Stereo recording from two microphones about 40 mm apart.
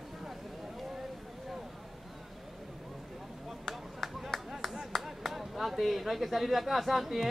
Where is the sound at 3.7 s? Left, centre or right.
Centre.